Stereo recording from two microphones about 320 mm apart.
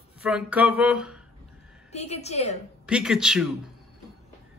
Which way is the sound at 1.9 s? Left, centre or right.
Centre.